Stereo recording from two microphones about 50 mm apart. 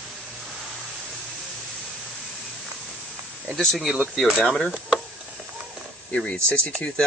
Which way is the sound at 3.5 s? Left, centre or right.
Centre.